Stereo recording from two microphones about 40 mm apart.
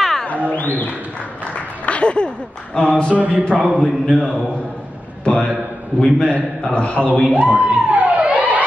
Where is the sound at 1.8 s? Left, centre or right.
Left.